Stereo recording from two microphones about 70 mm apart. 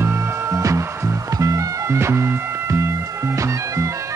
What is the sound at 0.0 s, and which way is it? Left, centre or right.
Music, right.